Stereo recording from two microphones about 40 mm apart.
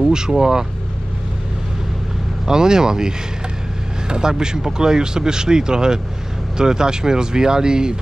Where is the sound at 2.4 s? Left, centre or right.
Centre.